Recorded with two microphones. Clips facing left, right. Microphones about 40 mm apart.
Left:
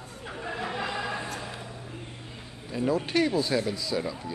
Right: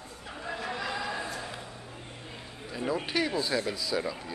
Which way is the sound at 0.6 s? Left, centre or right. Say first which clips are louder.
Left 2 dB; left.